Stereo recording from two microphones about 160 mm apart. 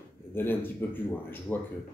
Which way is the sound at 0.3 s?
15° left (ahead or behind).